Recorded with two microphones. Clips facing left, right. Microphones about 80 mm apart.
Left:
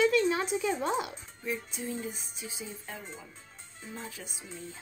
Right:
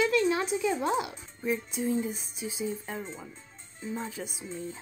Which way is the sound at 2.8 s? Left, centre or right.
Right.